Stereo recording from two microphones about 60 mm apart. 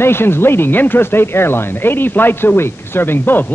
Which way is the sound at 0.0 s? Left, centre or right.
Left.